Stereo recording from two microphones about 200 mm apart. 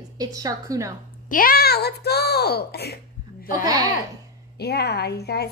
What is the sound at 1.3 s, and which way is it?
A woman's voice, 45° left (ahead or behind).